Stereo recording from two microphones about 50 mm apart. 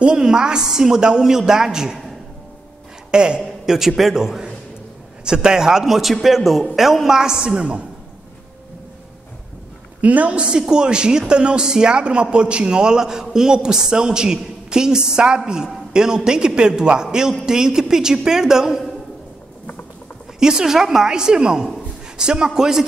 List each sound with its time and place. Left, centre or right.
0.0 s a woman's voice: centre
10.0 s a woman's voice: right; by 18.8 s centre
20.3 s a woman's voice: centre